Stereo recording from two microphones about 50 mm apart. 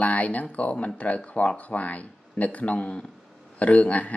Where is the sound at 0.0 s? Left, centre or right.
Left.